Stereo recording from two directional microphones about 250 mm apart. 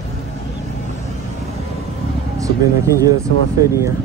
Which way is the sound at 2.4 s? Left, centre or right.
Centre.